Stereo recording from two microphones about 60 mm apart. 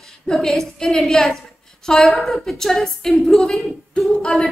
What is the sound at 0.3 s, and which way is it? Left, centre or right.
A woman's voice, centre.